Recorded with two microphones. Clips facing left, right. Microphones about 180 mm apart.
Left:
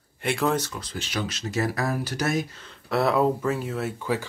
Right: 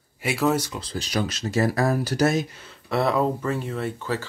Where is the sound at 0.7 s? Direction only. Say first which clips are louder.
Right 4 dB; 35° right (ahead or behind).